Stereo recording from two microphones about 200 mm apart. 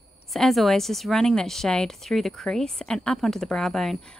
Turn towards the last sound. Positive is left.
turn(degrees=0)  # may be behind; listen again after turning